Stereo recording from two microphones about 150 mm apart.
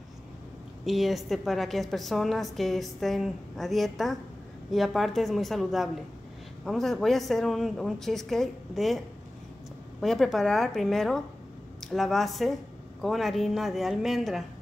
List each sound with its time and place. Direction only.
0.8 s a woman's voice: centre (ahead or behind)